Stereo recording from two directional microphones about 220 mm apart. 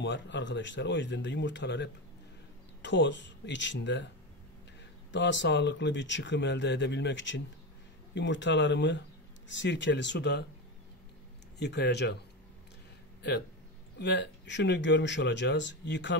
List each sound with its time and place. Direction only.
0.0 s speech: 55° left (ahead or behind)
5.1 s speech: 55° left (ahead or behind)
11.5 s speech: 50° left (ahead or behind)
13.9 s speech: 50° left (ahead or behind)